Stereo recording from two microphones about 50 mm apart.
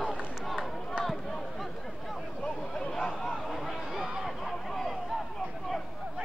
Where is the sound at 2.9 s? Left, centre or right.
Centre.